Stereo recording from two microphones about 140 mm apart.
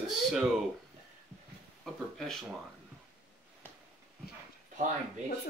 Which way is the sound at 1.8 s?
Centre (ahead or behind).